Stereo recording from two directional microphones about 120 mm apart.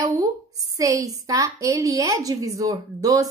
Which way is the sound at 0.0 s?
30° right (ahead or behind).